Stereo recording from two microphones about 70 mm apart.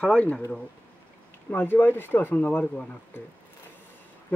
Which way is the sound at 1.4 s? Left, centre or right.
Left.